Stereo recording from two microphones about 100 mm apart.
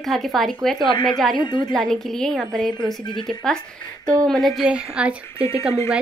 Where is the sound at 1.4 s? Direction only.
50° left (ahead or behind).